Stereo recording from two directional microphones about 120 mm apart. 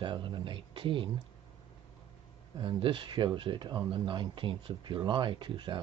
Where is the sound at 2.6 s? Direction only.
45° right (ahead or behind).